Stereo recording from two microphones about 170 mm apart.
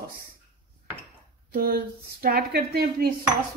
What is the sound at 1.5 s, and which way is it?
A woman's voice, 60° right (ahead or behind).